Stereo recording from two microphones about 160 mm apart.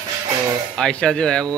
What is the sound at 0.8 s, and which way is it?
Speech, 5° left (ahead or behind).